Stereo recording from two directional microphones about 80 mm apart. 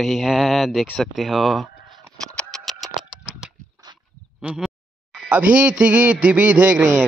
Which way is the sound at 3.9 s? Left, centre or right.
Right.